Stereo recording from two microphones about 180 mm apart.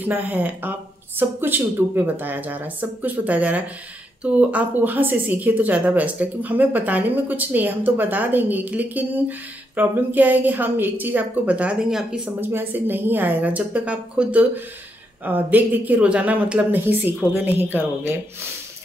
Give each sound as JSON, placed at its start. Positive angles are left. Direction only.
{"t": 0.0, "sound": "a woman's voice", "side_deg": -10}